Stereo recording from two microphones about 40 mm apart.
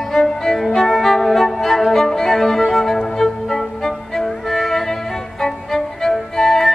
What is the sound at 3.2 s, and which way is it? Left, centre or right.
Music, centre.